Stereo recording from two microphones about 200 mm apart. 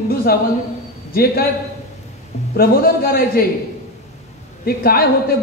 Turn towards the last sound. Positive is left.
turn(degrees=50)  # may be behind; listen again after turning